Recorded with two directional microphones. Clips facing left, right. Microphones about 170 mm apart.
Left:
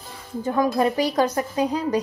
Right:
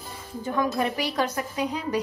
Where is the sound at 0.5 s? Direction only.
40° left (ahead or behind).